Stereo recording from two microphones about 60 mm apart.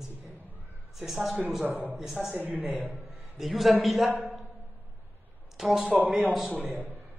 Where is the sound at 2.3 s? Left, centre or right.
Right.